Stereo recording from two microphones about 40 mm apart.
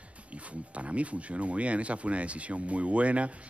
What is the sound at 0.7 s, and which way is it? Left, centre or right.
Speech, right.